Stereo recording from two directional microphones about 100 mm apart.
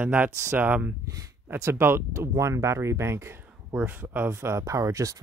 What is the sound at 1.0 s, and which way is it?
Speech, 35° right (ahead or behind).